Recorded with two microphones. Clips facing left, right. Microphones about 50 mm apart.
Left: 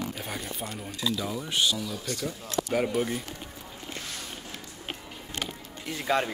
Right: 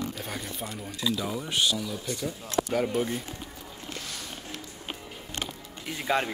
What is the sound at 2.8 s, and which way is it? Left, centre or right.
Speech, centre.